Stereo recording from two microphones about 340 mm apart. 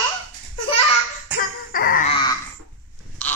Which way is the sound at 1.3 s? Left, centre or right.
Left.